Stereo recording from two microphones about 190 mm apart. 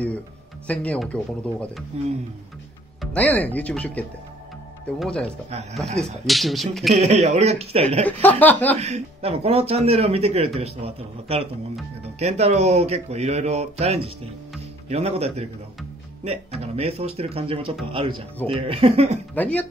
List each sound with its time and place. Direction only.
0.7 s speech: 5° left (ahead or behind)
3.0 s speech: 5° left (ahead or behind)
5.5 s speech: 35° right (ahead or behind)
6.2 s speech: centre (ahead or behind)
7.0 s speech: 35° right (ahead or behind)
8.0 s speech: 10° left (ahead or behind)
8.7 s speech: 35° right (ahead or behind)
19.3 s speech: 10° left (ahead or behind)